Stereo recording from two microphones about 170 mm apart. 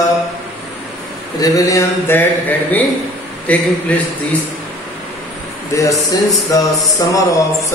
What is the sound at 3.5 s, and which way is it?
Mantra, 10° left (ahead or behind).